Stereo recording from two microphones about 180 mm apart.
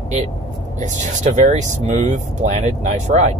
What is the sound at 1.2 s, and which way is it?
Speech, 40° right (ahead or behind).